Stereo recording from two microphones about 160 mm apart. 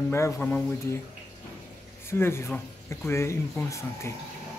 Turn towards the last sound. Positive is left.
turn(degrees=15)  # may be behind; listen again after turning